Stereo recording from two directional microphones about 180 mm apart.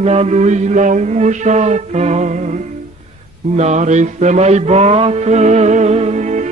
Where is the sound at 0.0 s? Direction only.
35° right (ahead or behind).